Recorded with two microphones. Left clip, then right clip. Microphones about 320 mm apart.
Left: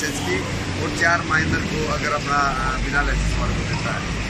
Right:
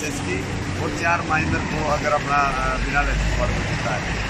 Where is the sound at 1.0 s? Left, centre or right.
Centre.